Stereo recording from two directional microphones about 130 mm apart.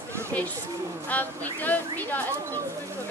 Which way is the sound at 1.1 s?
15° left (ahead or behind).